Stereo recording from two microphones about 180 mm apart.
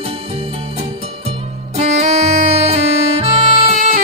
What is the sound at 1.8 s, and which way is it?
Saxophone, 35° right (ahead or behind).